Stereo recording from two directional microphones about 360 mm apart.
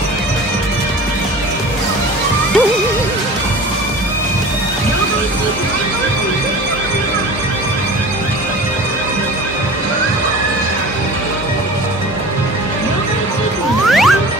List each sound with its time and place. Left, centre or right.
13.8 s ding: centre